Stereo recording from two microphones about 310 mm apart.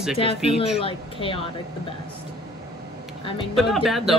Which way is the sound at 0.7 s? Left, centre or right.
Centre.